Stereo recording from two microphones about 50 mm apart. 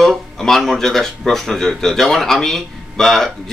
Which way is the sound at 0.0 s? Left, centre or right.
Centre.